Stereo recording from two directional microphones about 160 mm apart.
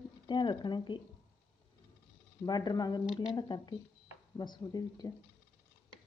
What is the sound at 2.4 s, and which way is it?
Speech, 25° left (ahead or behind).